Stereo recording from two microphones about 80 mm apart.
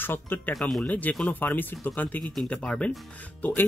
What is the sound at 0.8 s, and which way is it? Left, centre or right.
Speech, left.